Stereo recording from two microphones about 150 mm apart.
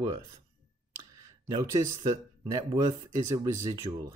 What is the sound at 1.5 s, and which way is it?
Speech, 20° right (ahead or behind).